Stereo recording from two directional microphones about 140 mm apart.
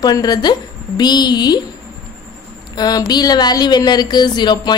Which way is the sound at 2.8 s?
30° left (ahead or behind).